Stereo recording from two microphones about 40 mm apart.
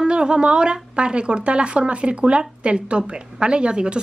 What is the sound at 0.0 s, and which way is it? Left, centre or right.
A woman's voice, right.